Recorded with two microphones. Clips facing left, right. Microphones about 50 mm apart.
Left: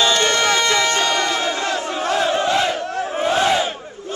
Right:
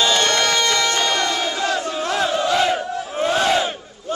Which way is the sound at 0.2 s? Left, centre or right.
Centre.